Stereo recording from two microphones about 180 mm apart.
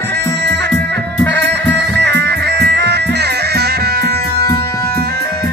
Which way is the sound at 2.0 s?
70° right (ahead or behind).